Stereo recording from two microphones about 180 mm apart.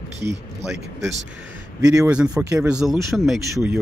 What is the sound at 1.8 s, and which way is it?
Speech, 5° right (ahead or behind).